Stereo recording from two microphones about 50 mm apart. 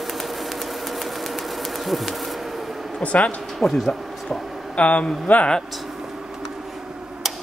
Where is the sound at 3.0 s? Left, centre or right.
Left.